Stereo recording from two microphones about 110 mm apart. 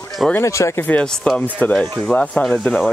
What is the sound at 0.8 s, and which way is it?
Speech, 10° left (ahead or behind).